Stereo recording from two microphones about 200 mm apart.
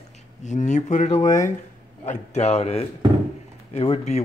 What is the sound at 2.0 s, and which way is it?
A man's voice, 35° left (ahead or behind).